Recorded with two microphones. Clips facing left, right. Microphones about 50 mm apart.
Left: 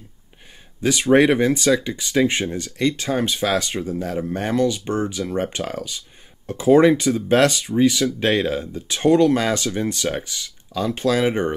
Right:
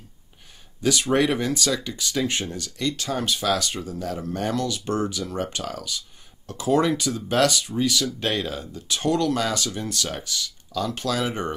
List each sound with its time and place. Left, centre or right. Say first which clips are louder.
0.8 s speech: left 6 dB; left